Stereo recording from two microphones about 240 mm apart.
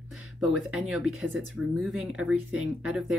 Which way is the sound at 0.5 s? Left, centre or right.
Centre.